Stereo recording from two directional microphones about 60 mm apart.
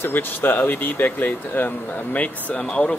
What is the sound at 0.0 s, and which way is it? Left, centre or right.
Speech, left.